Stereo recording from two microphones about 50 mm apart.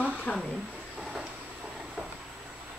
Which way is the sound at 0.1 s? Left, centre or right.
Left.